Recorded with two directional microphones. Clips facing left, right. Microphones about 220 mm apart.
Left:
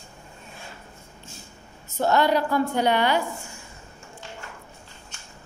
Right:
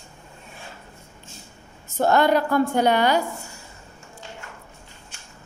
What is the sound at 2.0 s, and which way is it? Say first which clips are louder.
A woman's voice: right 2 dB; 50° right (ahead or behind).